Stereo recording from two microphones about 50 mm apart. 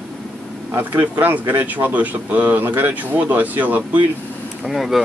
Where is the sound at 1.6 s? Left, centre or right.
Right.